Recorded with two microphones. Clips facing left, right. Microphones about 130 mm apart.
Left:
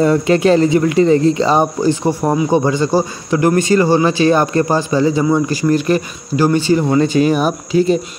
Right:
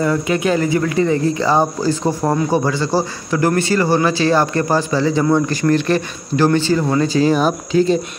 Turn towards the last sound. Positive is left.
turn(degrees=-30)  # may be behind; listen again after turning